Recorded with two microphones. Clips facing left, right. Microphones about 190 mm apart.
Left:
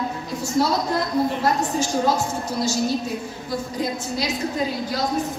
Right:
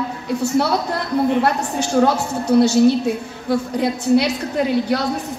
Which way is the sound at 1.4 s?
65° right (ahead or behind).